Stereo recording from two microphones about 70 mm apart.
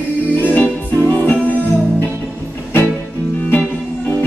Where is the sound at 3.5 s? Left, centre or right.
Left.